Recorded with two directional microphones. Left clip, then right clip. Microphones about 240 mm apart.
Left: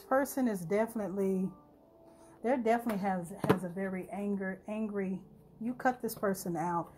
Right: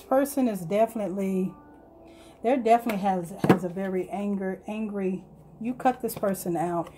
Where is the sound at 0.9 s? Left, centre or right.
Left.